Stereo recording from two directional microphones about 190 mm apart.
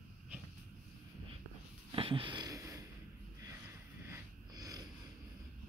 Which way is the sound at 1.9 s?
25° right (ahead or behind).